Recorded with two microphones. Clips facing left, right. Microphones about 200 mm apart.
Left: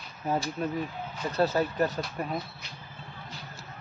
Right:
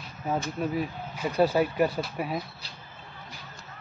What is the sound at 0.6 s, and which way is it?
Speech, 10° right (ahead or behind).